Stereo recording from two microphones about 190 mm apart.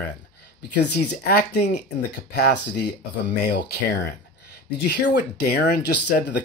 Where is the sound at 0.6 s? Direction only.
60° left (ahead or behind).